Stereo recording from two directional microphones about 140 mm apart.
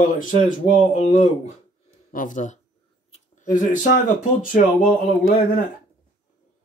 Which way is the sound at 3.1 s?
65° left (ahead or behind).